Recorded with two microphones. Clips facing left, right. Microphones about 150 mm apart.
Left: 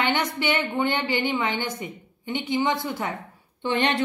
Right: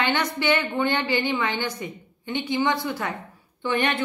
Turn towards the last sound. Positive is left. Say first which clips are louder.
# left 1 dB
turn(degrees=30)  # may be behind; listen again after turning